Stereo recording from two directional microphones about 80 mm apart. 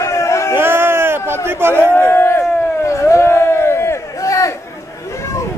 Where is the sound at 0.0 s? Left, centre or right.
Left.